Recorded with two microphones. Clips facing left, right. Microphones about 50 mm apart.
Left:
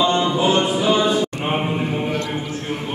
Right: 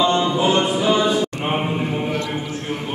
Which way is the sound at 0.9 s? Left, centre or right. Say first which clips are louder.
Even; left.